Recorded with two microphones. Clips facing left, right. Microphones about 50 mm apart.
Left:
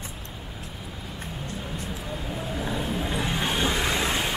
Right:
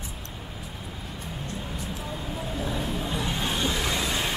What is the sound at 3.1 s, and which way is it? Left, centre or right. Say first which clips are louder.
Music: left 2 dB; left.